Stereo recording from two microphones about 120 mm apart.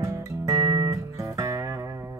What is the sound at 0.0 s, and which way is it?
Music, 30° right (ahead or behind).